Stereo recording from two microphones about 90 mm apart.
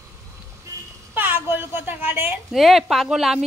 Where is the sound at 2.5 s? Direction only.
5° right (ahead or behind).